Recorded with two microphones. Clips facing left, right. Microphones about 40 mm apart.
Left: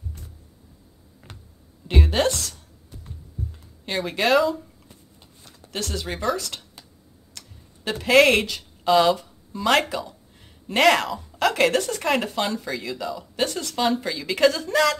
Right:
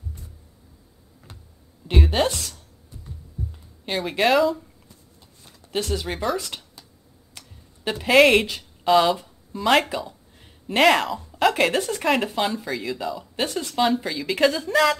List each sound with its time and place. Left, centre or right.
1.9 s a woman's voice: centre
3.8 s speech: centre
5.4 s a sound: centre
6.0 s speech: centre
7.9 s speech: centre
10.0 s a sound: centre
11.3 s speech: centre
13.5 s speech: centre
13.7 s speech: centre